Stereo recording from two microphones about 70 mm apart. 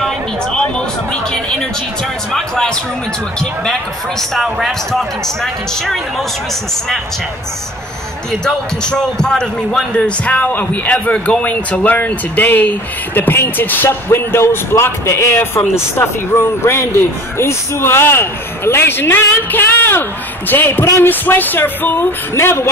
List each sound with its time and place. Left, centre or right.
0.0 s a sound: centre
2.3 s speech: centre
4.2 s speech: centre
8.3 s a man's voice: centre; by 22.7 s left